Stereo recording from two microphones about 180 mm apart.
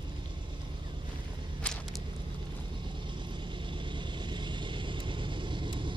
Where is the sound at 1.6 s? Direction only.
5° left (ahead or behind).